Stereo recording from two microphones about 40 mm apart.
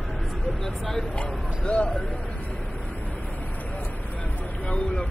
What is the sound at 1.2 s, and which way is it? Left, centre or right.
Speech, left.